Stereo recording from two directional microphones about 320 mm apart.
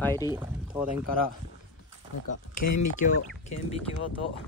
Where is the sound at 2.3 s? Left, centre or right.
Left.